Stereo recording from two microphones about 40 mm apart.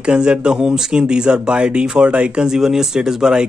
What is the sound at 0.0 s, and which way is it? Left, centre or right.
Speech, right.